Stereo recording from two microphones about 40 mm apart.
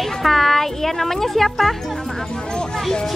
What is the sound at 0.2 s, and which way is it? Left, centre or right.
Speech, centre.